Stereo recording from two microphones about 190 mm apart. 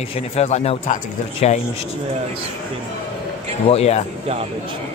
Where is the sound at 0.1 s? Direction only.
35° left (ahead or behind).